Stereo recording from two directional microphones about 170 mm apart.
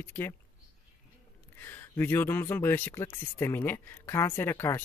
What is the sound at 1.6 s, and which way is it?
Speech, 10° left (ahead or behind).